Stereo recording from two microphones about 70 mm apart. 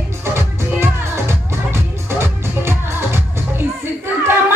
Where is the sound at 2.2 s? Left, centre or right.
Right.